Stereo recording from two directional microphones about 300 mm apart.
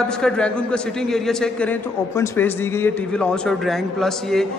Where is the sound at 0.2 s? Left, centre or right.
Centre.